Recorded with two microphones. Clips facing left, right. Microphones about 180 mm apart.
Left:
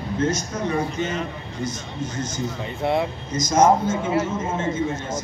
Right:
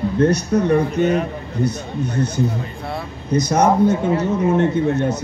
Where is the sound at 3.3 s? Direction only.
65° right (ahead or behind).